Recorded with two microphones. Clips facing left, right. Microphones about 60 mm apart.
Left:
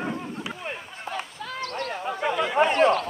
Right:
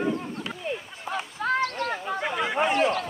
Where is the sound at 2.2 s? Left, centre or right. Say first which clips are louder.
Left 5 dB; centre.